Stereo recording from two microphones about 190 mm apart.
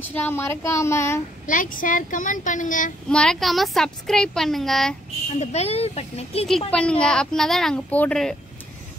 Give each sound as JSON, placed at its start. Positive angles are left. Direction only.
{"t": 0.1, "sound": "a woman's voice", "side_deg": 10}
{"t": 1.4, "sound": "speech", "side_deg": 45}
{"t": 3.1, "sound": "a woman's voice", "side_deg": 5}
{"t": 5.4, "sound": "speech", "side_deg": 35}
{"t": 6.7, "sound": "a woman's voice", "side_deg": 5}